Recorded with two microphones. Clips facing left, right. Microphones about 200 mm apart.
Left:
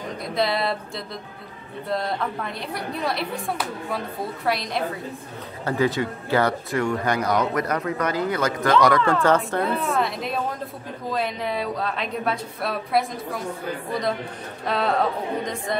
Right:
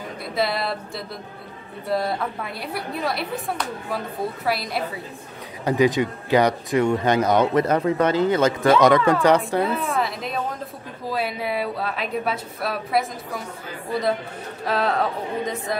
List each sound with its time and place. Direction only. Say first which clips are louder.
0.3 s speech: left 1 dB; centre (ahead or behind)
5.7 s a woman's voice: right 4 dB; 15° right (ahead or behind)
9.8 s speech: left 1 dB; centre (ahead or behind)
14.7 s speech: even; centre (ahead or behind)